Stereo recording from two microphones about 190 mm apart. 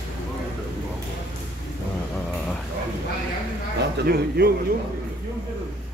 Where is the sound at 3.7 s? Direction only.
55° right (ahead or behind).